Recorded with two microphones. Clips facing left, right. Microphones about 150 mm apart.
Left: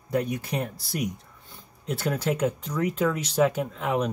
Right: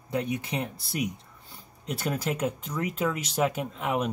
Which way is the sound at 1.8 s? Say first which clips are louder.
Left 3 dB; 5° right (ahead or behind).